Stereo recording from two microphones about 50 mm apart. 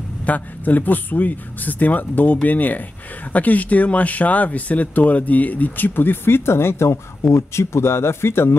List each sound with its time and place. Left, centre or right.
0.3 s speech: left